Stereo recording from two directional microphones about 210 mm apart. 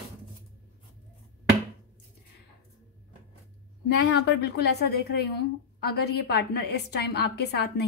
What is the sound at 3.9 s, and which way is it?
A woman's voice, 55° left (ahead or behind).